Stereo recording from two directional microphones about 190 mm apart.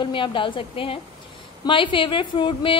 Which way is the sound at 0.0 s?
25° left (ahead or behind).